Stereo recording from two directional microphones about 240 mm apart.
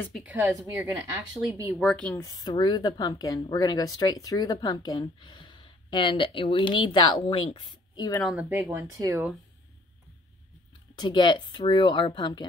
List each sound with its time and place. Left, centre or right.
0.2 s speech: centre
2.2 s a woman's voice: centre
8.2 s speech: centre
11.0 s speech: centre